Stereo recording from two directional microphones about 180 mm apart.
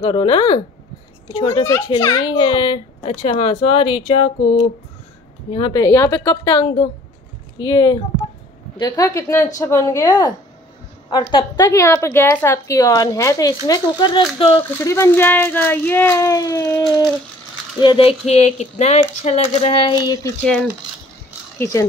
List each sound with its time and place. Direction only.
0.0 s a woman's voice: 30° left (ahead or behind)
21.5 s speech: 15° left (ahead or behind)